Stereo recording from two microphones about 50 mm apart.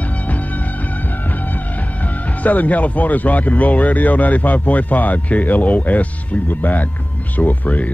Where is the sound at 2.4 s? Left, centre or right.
Left.